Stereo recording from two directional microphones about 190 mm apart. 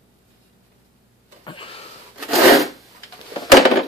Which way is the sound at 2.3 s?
Centre (ahead or behind).